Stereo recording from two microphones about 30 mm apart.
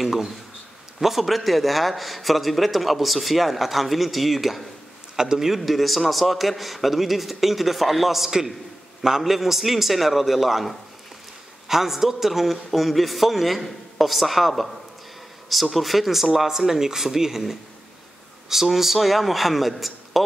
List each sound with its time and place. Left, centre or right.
0.0 s a man's voice: centre
5.1 s a man's voice: right
5.6 s a man's voice: centre